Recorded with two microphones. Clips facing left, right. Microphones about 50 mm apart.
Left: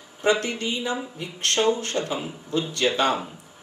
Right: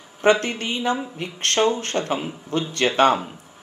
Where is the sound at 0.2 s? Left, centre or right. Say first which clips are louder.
Right 4 dB; right.